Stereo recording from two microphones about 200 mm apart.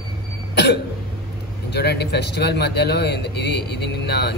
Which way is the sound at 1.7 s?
55° left (ahead or behind).